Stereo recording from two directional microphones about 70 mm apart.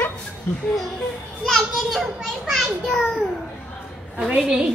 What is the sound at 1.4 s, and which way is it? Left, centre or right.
A woman's voice, centre.